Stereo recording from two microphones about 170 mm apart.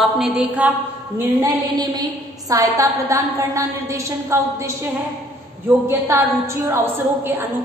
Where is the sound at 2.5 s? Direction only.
20° right (ahead or behind).